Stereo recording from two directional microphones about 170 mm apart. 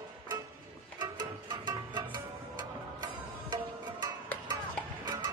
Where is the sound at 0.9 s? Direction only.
25° right (ahead or behind).